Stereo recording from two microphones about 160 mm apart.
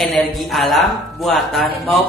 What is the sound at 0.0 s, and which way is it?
Speech, centre (ahead or behind).